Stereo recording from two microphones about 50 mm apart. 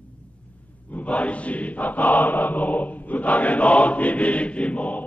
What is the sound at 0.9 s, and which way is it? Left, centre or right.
Chant, left.